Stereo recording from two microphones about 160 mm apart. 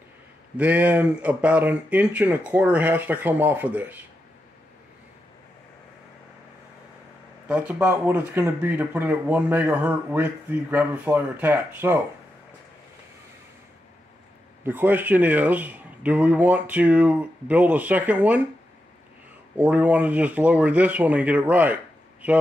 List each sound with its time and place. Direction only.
0.6 s speech: 10° right (ahead or behind)
7.4 s speech: 10° right (ahead or behind)
14.6 s speech: 10° right (ahead or behind)
19.5 s speech: 10° right (ahead or behind)